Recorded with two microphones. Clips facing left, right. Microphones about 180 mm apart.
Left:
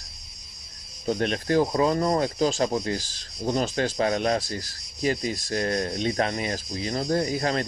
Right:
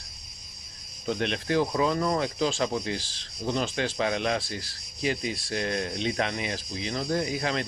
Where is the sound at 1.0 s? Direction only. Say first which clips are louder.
Left 3 dB; 40° left (ahead or behind).